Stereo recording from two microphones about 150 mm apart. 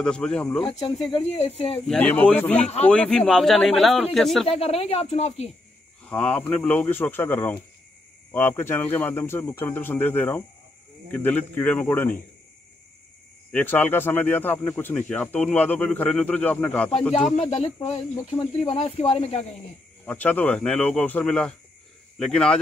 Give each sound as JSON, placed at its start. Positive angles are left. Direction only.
{"t": 0.0, "sound": "speech", "side_deg": 5}
{"t": 0.7, "sound": "speech", "side_deg": 40}
{"t": 1.9, "sound": "speech", "side_deg": 10}
{"t": 4.5, "sound": "speech", "side_deg": 40}
{"t": 6.0, "sound": "speech", "side_deg": 5}
{"t": 13.5, "sound": "speech", "side_deg": 10}
{"t": 17.4, "sound": "speech", "side_deg": 50}
{"t": 20.1, "sound": "speech", "side_deg": 10}